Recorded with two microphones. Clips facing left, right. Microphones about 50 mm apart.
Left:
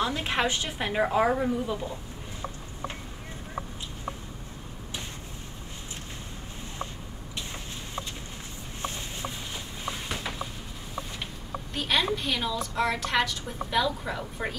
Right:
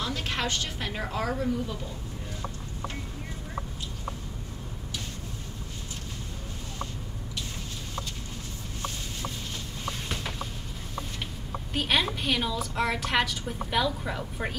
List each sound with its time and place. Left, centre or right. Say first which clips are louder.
0.0 s a woman's voice: left 4 dB; left
9.8 s a sound: left 1 dB; centre
11.7 s a woman's voice: even; centre